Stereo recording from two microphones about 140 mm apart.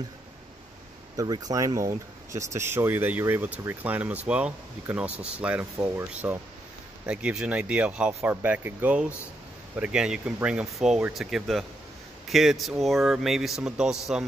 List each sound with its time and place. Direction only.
1.1 s a man's voice: 25° right (ahead or behind); by 14.2 s 5° right (ahead or behind)